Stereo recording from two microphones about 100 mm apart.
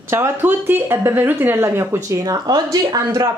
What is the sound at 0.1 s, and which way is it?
Speech, 25° right (ahead or behind).